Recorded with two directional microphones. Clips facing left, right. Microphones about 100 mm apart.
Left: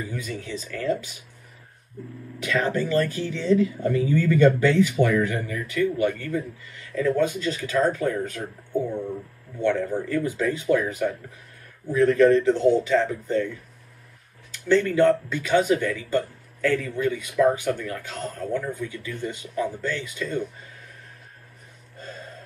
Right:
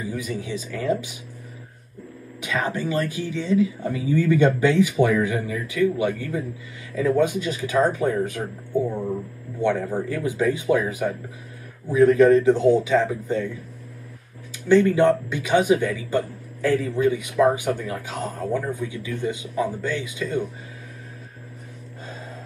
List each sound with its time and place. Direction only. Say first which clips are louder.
0.0 s speech: right 3 dB; 10° right (ahead or behind)
2.4 s speech: left 1 dB; 15° right (ahead or behind)
9.6 s a man's voice: right 1 dB; 15° right (ahead or behind)
14.5 s speech: right 4 dB; 15° right (ahead or behind)